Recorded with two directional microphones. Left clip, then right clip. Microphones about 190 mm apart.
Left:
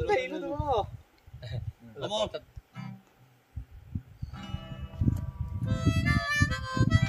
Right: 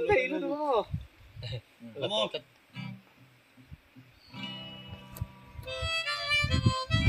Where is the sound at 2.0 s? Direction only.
10° right (ahead or behind).